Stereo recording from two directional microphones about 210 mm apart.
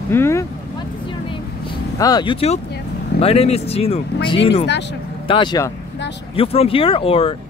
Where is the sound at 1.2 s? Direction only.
25° left (ahead or behind).